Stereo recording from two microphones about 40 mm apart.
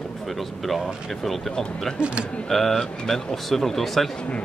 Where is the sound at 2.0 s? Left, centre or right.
Right.